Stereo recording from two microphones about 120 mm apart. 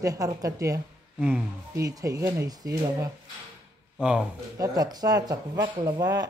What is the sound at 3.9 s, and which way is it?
Speech, 10° right (ahead or behind).